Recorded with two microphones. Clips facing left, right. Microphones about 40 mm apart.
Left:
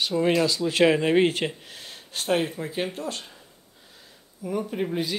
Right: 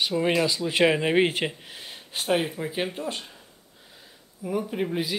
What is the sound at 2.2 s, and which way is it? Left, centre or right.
Speech, centre.